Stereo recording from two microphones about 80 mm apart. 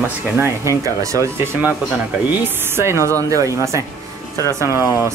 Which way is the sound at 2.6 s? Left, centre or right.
Right.